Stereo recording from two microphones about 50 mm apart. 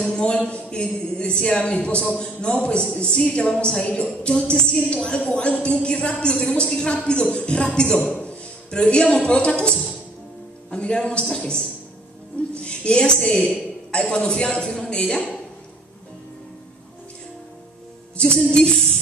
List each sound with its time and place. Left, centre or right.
0.1 s a man's voice: centre
18.1 s music: centre
18.5 s speech: centre